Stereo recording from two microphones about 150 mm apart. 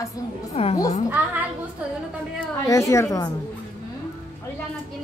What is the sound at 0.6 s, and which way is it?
Speech, 40° left (ahead or behind).